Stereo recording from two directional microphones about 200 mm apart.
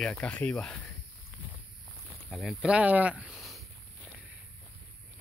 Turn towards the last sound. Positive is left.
turn(degrees=0)  # may be behind; listen again after turning